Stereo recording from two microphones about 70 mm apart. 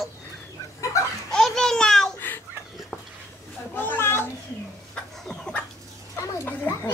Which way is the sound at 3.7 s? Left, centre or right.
Left.